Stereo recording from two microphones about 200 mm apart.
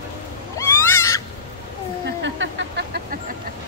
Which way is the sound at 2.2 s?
65° right (ahead or behind).